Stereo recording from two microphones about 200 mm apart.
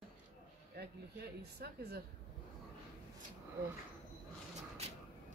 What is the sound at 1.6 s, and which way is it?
Speech, 55° right (ahead or behind).